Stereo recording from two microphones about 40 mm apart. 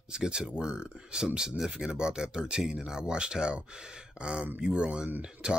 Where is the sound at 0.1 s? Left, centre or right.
Right.